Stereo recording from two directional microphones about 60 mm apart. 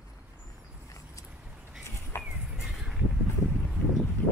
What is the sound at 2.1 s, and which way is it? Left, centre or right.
Music, left.